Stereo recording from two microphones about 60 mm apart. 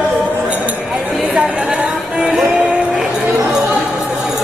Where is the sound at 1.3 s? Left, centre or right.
Centre.